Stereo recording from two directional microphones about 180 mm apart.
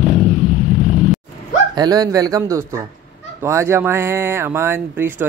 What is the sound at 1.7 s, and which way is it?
Speech, 20° right (ahead or behind).